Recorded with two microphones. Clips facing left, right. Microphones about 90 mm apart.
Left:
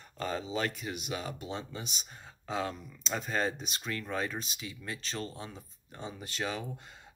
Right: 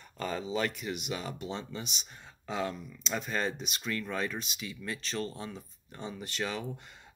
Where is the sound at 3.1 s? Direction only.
30° left (ahead or behind).